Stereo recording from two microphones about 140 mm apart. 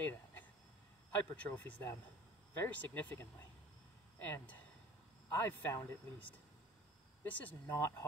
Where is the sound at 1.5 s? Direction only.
15° left (ahead or behind).